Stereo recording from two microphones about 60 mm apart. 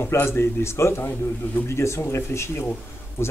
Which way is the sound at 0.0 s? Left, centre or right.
Left.